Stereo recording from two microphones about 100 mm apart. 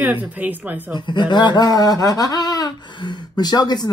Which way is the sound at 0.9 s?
50° left (ahead or behind).